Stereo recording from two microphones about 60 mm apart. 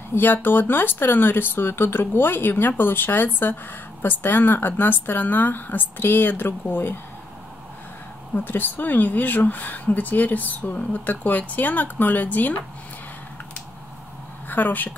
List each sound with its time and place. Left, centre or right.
0.1 s speech: left
8.5 s speech: left
14.5 s speech: left